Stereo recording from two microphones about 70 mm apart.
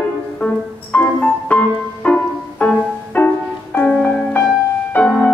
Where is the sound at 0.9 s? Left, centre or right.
Left.